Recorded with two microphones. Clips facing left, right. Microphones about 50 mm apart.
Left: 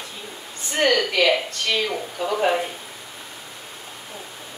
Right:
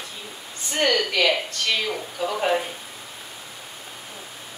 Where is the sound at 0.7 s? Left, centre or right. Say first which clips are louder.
Left 2 dB; centre.